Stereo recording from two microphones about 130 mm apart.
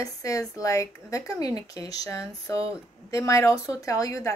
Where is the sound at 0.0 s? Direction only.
25° left (ahead or behind).